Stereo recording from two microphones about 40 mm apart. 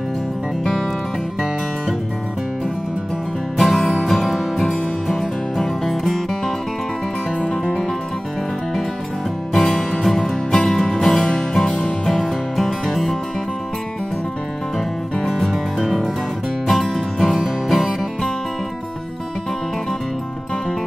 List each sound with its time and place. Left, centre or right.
3.5 s music: centre
9.5 s music: centre
10.5 s music: centre
10.8 s music: centre
15.2 s music: centre